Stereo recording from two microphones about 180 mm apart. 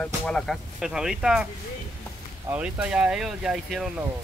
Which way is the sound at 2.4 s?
5° right (ahead or behind).